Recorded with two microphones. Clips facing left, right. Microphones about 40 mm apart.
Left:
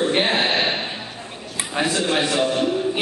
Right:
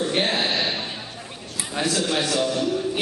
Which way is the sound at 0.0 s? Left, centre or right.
Left.